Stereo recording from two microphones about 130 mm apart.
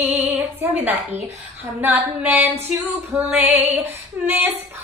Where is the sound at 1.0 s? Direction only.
60° right (ahead or behind).